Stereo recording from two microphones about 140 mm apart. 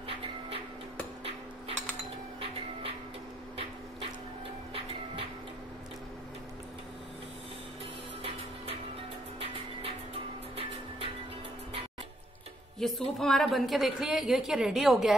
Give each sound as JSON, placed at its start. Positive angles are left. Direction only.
{"t": 9.4, "sound": "a sound", "side_deg": -40}
{"t": 12.7, "sound": "music", "side_deg": 0}
{"t": 13.2, "sound": "a woman's voice", "side_deg": 0}